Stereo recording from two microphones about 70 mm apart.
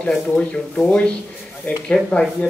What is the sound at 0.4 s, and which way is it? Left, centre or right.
Speech, centre.